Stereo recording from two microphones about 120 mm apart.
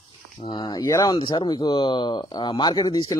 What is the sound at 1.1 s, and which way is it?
Speech, 45° left (ahead or behind).